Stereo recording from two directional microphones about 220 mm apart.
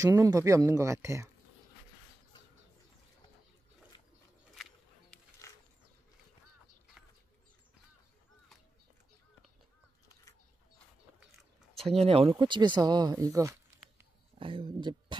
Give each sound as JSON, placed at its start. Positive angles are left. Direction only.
{"t": 0.0, "sound": "speech", "side_deg": -15}
{"t": 5.1, "sound": "music", "side_deg": 5}
{"t": 12.0, "sound": "speech", "side_deg": -25}